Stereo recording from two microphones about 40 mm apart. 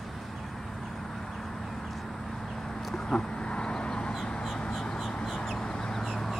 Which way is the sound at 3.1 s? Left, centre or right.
Centre.